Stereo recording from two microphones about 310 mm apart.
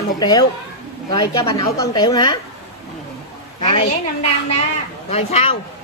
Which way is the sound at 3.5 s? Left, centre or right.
Centre.